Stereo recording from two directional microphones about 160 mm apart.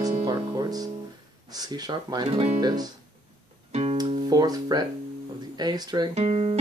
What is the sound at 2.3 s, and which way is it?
Speech, 40° right (ahead or behind).